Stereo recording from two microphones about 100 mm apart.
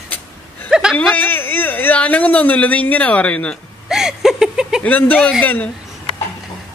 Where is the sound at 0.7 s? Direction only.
5° right (ahead or behind).